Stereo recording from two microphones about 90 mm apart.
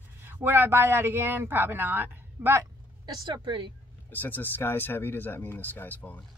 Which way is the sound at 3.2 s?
60° right (ahead or behind).